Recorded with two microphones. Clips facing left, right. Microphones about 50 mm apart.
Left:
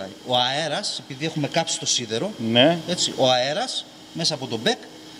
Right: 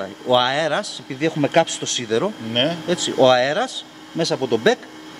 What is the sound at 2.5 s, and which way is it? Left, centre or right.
Speech, centre.